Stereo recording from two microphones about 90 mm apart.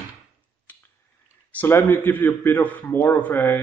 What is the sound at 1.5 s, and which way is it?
Speech, 25° left (ahead or behind).